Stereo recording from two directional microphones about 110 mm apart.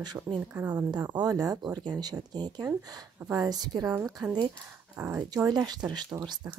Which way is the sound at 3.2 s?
25° right (ahead or behind).